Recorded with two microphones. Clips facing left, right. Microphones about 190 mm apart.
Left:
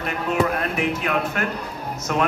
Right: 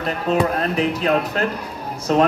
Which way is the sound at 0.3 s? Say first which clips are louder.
Right 3 dB; 35° right (ahead or behind).